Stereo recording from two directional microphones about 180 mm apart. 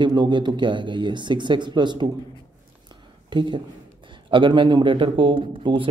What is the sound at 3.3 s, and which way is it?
Speech, 25° right (ahead or behind).